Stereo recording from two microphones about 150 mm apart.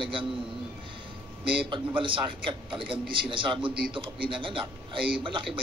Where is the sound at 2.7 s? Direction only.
35° right (ahead or behind).